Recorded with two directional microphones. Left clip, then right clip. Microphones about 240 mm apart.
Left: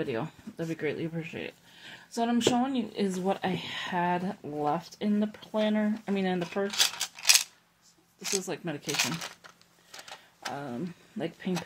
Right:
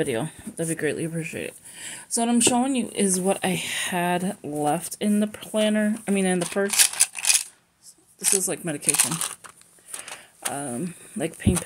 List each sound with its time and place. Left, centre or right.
0.0 s speech: right
8.2 s speech: centre
8.5 s speech: right
9.9 s a sound: centre
10.5 s speech: right